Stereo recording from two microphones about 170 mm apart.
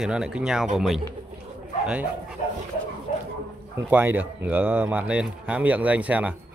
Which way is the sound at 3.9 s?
10° right (ahead or behind).